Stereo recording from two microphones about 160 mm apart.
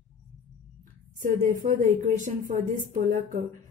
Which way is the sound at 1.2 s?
55° right (ahead or behind).